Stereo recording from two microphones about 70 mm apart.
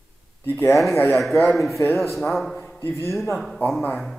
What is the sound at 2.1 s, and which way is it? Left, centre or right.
Speech, centre.